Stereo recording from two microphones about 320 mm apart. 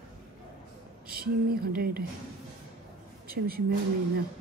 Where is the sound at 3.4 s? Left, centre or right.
Right.